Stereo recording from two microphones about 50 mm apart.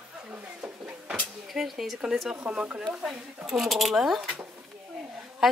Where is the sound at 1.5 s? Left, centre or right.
Centre.